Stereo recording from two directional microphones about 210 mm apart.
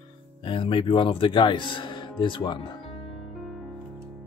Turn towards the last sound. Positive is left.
turn(degrees=0)  # may be behind; listen again after turning